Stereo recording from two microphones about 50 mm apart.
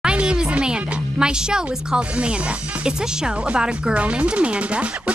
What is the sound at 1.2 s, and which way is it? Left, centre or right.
Speech, centre.